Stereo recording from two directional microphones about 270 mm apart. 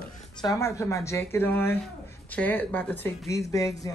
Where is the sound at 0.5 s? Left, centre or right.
Centre.